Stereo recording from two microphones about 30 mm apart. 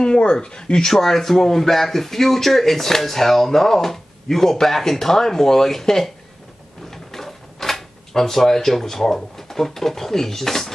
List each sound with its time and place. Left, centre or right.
0.0 s speech: left
0.9 s speech: centre
6.9 s drawer open or close: centre